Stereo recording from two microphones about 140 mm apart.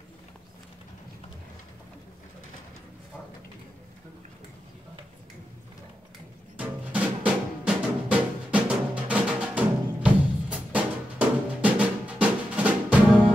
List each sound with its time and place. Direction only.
6.5 s music: 10° right (ahead or behind)